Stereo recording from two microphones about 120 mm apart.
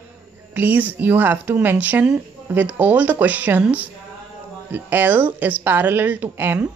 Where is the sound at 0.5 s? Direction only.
15° right (ahead or behind).